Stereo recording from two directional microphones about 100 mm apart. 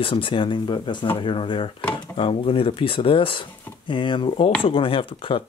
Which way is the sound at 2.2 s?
65° left (ahead or behind).